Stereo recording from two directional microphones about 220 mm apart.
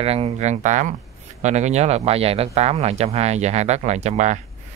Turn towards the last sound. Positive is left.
turn(degrees=-30)  # may be behind; listen again after turning